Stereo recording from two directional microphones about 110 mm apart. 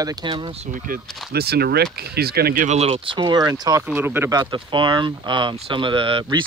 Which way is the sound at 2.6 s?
70° right (ahead or behind).